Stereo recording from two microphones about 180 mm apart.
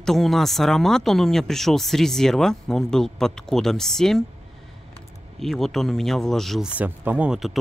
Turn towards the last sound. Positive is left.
turn(degrees=0)  # may be behind; listen again after turning